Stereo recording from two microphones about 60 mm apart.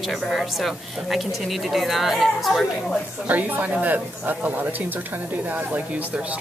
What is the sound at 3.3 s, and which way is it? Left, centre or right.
A woman's voice, right.